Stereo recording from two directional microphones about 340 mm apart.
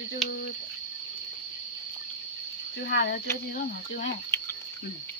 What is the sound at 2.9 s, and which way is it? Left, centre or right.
Speech, left.